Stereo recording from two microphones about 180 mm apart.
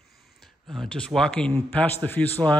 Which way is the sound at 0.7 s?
Centre (ahead or behind).